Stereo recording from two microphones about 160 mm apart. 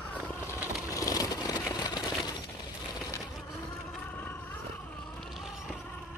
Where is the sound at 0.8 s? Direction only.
20° left (ahead or behind).